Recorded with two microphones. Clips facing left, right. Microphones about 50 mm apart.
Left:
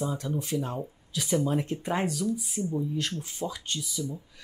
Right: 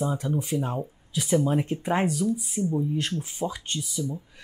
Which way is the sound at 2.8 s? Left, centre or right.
Right.